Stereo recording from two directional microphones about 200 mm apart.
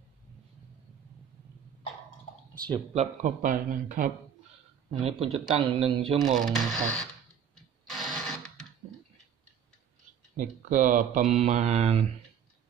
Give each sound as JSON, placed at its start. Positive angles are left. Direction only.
{"t": 2.5, "sound": "speech", "side_deg": 5}
{"t": 2.9, "sound": "speech", "side_deg": -35}
{"t": 5.0, "sound": "speech", "side_deg": -30}
{"t": 6.3, "sound": "speech", "side_deg": 0}
{"t": 7.8, "sound": "a sound", "side_deg": 0}
{"t": 10.3, "sound": "speech", "side_deg": -40}